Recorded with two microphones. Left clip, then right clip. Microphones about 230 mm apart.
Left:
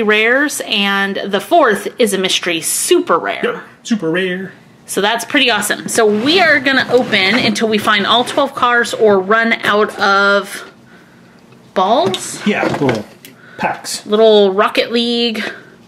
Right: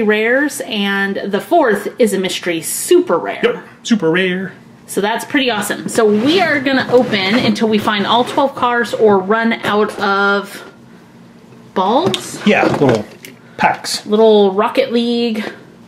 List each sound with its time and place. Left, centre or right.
0.0 s a woman's voice: centre
11.7 s a woman's voice: centre